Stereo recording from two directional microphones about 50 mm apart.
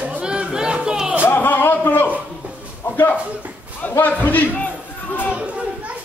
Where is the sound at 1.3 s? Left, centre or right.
Left.